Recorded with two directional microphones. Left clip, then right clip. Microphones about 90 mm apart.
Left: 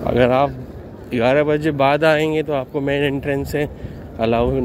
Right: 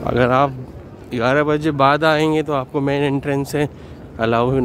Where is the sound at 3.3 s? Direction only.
45° right (ahead or behind).